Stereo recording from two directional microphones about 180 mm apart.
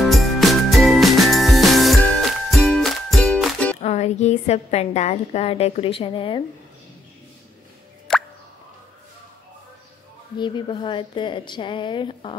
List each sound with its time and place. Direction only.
0.0 s music: centre (ahead or behind)
3.8 s a woman's voice: 40° left (ahead or behind)
8.1 s plop: 5° left (ahead or behind)
10.4 s speech: 25° left (ahead or behind)